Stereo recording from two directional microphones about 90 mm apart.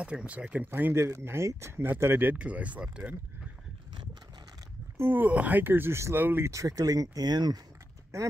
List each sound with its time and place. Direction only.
0.0 s speech: 15° right (ahead or behind)
0.7 s speech: 25° right (ahead or behind)
4.9 s speech: 25° right (ahead or behind); by 7.6 s 50° right (ahead or behind)